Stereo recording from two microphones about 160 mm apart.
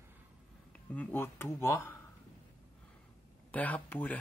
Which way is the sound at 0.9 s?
10° left (ahead or behind).